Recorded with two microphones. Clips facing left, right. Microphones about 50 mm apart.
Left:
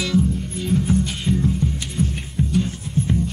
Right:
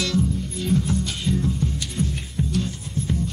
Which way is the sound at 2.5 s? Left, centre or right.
Left.